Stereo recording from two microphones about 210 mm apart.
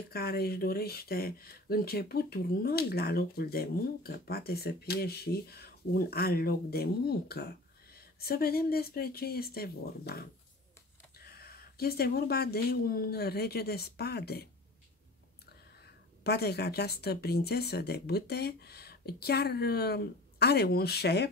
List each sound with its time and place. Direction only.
0.1 s speech: 45° left (ahead or behind)
11.2 s speech: 45° left (ahead or behind)
16.3 s speech: 50° left (ahead or behind)